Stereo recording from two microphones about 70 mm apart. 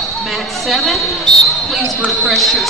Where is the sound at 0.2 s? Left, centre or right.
Centre.